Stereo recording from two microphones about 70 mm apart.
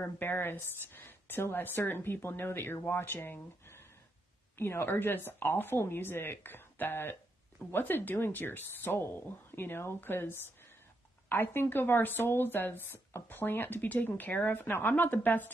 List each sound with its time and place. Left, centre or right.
0.0 s speech: left